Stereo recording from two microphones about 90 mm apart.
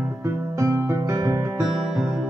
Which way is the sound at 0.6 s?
35° right (ahead or behind).